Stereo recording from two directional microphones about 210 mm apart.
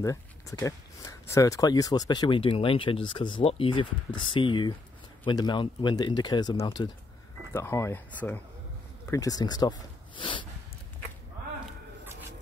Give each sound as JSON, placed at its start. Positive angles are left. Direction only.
{"t": 0.0, "sound": "speech", "side_deg": 15}
{"t": 7.5, "sound": "speech", "side_deg": 10}